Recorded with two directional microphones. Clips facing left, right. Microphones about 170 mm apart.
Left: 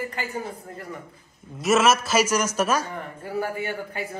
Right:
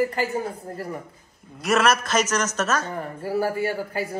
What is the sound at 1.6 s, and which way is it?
A man's voice, centre (ahead or behind).